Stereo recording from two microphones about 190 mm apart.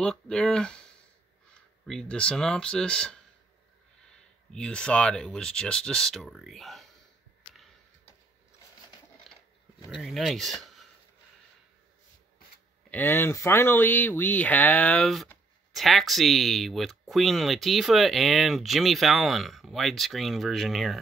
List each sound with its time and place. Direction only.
0.0 s speech: 5° left (ahead or behind)
1.9 s speech: 5° left (ahead or behind)
4.5 s speech: 5° left (ahead or behind)
9.3 s a sound: centre (ahead or behind)
9.8 s speech: centre (ahead or behind)
12.9 s speech: 10° left (ahead or behind)